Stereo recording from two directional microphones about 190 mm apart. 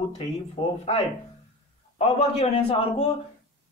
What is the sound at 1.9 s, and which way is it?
A man's voice, 35° left (ahead or behind).